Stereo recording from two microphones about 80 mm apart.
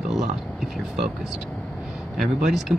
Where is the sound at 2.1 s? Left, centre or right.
Centre.